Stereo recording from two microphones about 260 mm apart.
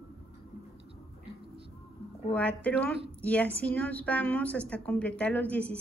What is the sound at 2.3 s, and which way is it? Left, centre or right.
A woman's voice, centre.